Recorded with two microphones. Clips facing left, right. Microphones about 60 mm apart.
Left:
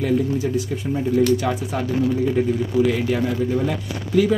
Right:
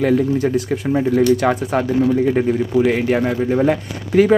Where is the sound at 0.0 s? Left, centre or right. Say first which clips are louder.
Right 5 dB; right.